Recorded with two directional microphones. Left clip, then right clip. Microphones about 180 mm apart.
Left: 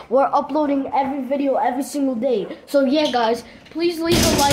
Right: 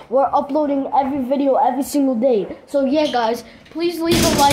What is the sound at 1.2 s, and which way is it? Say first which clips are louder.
A woman's voice: right 3 dB; 25° right (ahead or behind).